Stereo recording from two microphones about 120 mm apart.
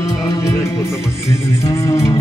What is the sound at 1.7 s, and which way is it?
Music, 25° left (ahead or behind).